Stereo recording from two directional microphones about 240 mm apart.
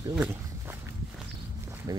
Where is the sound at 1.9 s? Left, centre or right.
Centre.